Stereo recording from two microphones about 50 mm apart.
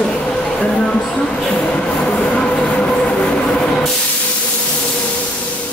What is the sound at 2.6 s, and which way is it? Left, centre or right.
Train, centre.